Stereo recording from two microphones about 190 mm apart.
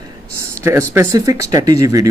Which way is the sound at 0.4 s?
15° right (ahead or behind).